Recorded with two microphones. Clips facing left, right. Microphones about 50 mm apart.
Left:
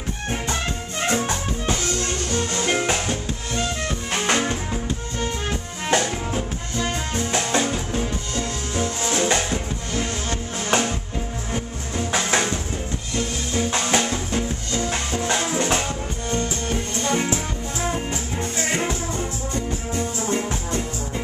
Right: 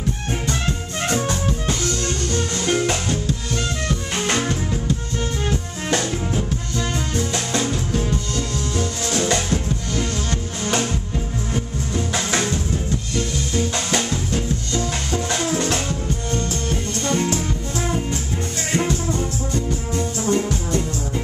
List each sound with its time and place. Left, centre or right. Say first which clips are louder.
1.0 s music: right 1 dB; left
5.5 s music: left 2 dB; left
7.2 s music: left 2 dB; left
18.7 s music: right 6 dB; centre